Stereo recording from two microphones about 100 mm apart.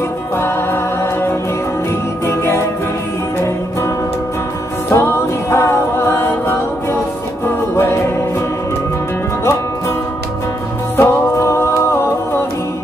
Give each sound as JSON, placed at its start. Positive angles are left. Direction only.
{"t": 2.2, "sound": "music", "side_deg": 25}
{"t": 4.9, "sound": "music", "side_deg": 25}
{"t": 9.4, "sound": "music", "side_deg": 25}
{"t": 11.0, "sound": "music", "side_deg": 25}